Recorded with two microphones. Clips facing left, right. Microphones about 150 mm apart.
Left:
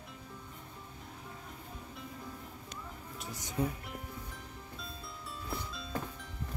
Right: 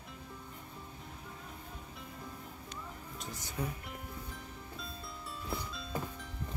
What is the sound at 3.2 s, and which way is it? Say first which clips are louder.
Speech: left 5 dB; 15° left (ahead or behind).